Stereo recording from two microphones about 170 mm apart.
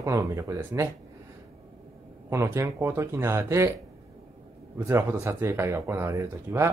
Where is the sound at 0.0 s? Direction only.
20° right (ahead or behind).